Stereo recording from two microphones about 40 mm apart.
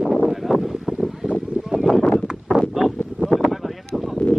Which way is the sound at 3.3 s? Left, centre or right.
Left.